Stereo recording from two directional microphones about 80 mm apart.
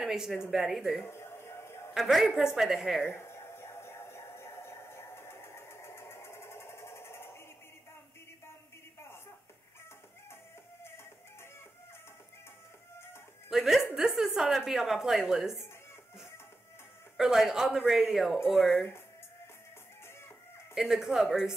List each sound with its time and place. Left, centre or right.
0.0 s a sound: centre
0.5 s speech: centre
1.0 s a sound: left
2.0 s speech: centre
3.1 s music: left
13.5 s music: centre
13.8 s a sound: centre
17.2 s speech: centre
20.7 s speech: centre